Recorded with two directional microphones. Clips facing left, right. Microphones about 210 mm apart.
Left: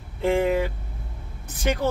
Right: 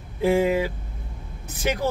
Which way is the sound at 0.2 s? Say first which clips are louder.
Right 1 dB; 5° right (ahead or behind).